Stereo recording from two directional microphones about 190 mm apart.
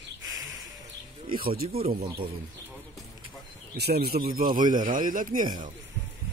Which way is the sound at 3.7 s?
55° right (ahead or behind).